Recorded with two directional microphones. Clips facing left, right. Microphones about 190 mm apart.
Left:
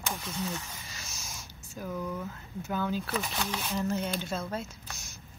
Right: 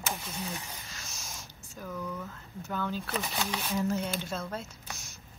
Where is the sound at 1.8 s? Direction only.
20° left (ahead or behind).